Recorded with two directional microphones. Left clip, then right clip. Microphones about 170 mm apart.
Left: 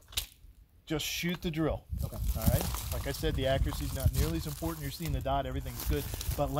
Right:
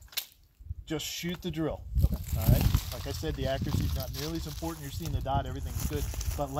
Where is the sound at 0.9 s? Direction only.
5° left (ahead or behind).